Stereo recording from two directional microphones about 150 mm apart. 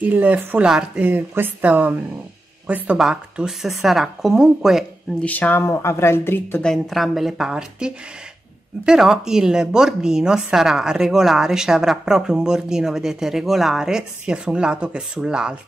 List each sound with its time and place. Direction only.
0.0 s a woman's voice: 10° right (ahead or behind)
5.2 s speech: 10° left (ahead or behind)
6.7 s a woman's voice: centre (ahead or behind)